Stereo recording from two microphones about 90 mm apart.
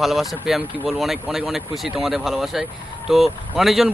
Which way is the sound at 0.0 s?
Centre (ahead or behind).